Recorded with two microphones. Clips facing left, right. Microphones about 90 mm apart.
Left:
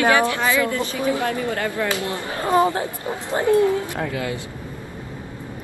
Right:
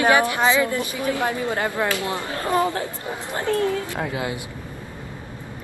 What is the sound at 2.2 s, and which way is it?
Speech, 20° left (ahead or behind).